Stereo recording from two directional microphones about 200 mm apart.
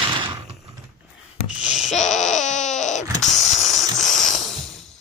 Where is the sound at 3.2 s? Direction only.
Centre (ahead or behind).